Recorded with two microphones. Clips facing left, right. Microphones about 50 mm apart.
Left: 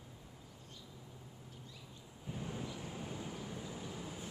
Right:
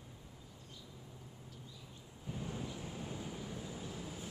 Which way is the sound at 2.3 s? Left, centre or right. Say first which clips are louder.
Even; centre.